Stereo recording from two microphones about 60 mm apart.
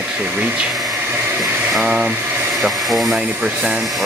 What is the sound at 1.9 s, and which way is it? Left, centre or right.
Speech, right.